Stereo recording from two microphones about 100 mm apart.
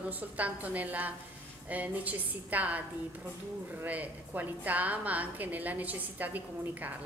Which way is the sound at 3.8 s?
15° right (ahead or behind).